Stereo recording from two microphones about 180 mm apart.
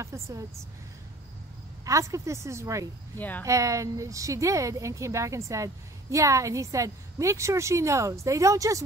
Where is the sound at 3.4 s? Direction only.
15° right (ahead or behind).